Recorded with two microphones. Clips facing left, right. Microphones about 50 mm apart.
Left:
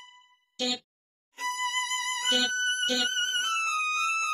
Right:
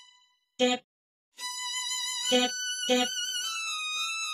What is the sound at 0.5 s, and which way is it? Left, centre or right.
Music, right.